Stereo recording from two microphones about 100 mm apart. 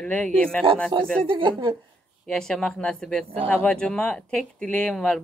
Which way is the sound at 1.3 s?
55° right (ahead or behind).